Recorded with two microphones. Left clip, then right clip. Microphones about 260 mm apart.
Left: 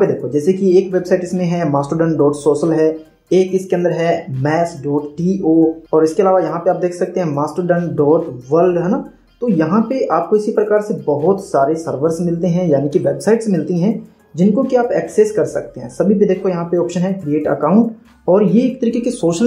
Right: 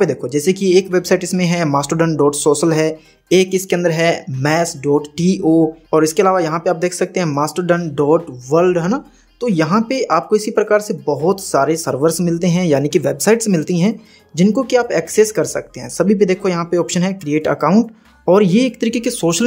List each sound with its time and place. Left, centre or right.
0.0 s speech: right